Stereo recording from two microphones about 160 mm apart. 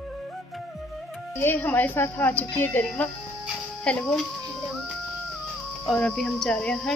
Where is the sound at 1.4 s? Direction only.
10° left (ahead or behind).